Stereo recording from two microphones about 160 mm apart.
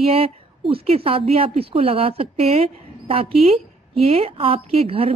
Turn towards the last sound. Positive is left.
turn(degrees=-40)  # may be behind; listen again after turning